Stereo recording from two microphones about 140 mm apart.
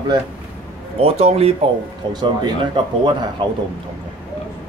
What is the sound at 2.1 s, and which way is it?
Speech, 30° right (ahead or behind).